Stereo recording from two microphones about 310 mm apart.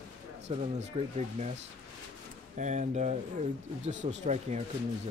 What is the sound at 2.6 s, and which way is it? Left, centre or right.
Speech, right.